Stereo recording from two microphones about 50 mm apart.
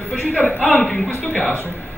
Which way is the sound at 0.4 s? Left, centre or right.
Left.